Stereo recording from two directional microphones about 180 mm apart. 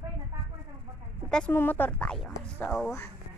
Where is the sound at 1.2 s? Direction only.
5° left (ahead or behind).